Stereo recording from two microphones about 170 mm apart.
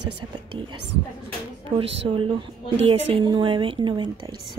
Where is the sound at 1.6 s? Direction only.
30° right (ahead or behind).